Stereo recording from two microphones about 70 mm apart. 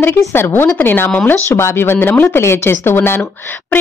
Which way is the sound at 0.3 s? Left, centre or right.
Left.